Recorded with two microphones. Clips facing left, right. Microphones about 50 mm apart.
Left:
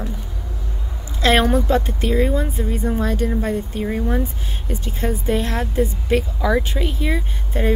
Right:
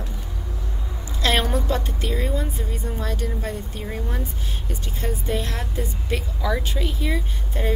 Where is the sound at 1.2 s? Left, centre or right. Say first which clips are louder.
Left 6 dB; left.